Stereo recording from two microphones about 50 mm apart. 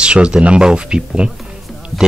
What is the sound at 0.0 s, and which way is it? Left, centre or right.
Speech, centre.